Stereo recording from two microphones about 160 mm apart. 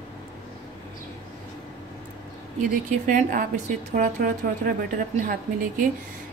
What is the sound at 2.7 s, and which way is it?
A woman's voice, 55° right (ahead or behind).